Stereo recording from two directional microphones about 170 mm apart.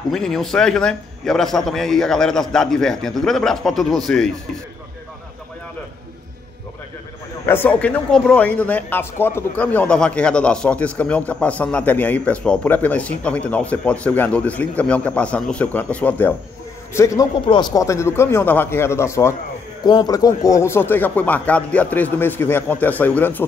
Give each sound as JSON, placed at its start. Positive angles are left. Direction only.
{"t": 0.1, "sound": "a man's voice", "side_deg": 0}
{"t": 7.4, "sound": "a man's voice", "side_deg": 10}